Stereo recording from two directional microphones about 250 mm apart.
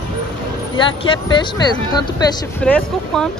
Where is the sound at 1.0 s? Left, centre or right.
Centre.